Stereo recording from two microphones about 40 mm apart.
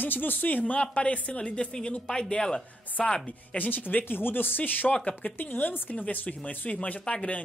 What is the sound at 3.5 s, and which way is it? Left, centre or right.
Speech, left.